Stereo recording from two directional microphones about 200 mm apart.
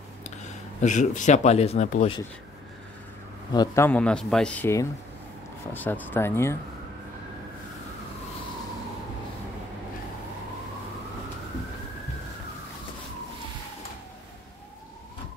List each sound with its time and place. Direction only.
0.4 s speech: 35° left (ahead or behind)
3.5 s speech: 15° left (ahead or behind)